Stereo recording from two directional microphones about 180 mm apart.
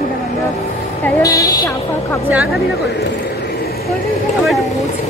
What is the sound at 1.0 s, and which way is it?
Speech, 20° left (ahead or behind).